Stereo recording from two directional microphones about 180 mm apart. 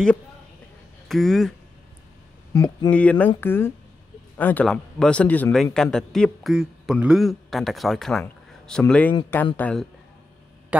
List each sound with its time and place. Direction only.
1.0 s speech: centre (ahead or behind)
2.5 s speech: 20° left (ahead or behind)
2.9 s a man's voice: 5° left (ahead or behind)
10.7 s speech: 10° right (ahead or behind)